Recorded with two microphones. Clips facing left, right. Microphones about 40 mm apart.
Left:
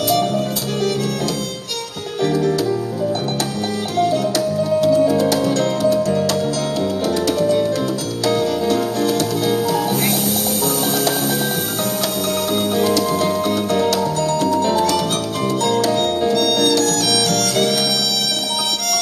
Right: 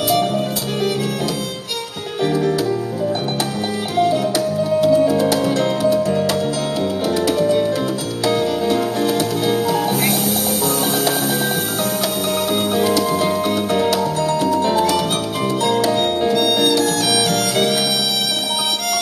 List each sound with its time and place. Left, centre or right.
2.2 s music: centre
3.9 s music: centre
12.7 s music: centre